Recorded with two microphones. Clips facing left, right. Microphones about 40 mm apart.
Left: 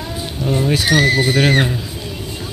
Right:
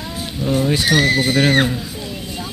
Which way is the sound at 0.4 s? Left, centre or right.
Left.